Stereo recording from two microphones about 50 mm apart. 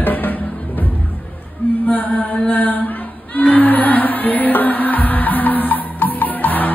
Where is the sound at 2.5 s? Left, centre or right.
Left.